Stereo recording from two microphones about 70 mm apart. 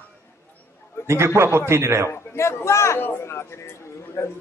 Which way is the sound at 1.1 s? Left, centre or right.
Right.